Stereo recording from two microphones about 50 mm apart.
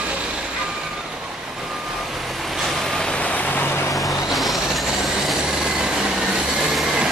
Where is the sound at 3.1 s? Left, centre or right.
Left.